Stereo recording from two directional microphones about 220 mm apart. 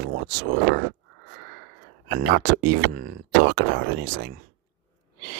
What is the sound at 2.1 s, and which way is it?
Speech, 45° right (ahead or behind).